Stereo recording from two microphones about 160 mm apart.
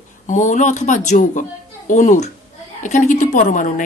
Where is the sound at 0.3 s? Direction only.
50° left (ahead or behind).